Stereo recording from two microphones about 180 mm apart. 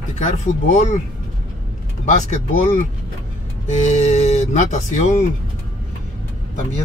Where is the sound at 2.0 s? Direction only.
40° left (ahead or behind).